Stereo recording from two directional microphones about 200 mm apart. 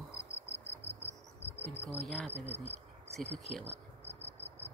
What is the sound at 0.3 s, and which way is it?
Cricket, 30° left (ahead or behind).